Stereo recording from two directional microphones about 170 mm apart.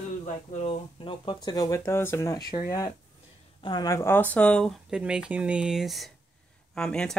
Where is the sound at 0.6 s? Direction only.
30° left (ahead or behind).